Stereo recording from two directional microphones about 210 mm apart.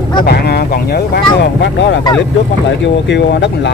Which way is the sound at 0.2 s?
50° left (ahead or behind).